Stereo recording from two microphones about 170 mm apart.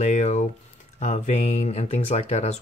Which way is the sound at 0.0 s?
40° left (ahead or behind).